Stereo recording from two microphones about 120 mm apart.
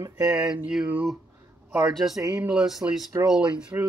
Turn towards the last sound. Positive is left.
turn(degrees=-5)  # may be behind; listen again after turning